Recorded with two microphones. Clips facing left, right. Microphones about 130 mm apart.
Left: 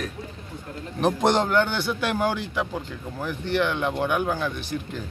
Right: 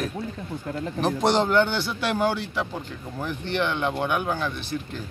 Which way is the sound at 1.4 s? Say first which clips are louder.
Right 1 dB; 10° left (ahead or behind).